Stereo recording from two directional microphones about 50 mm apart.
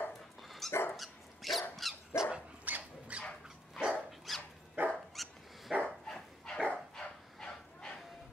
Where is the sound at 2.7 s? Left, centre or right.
Right.